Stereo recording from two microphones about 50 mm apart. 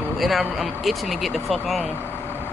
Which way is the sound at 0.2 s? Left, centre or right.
Centre.